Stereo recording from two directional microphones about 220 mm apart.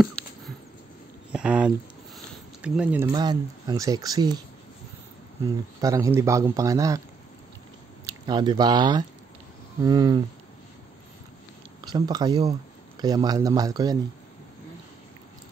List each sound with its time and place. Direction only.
1.3 s speech: 5° right (ahead or behind)
5.4 s a man's voice: 15° right (ahead or behind)
8.1 s a man's voice: 20° right (ahead or behind)
11.8 s a man's voice: 20° right (ahead or behind)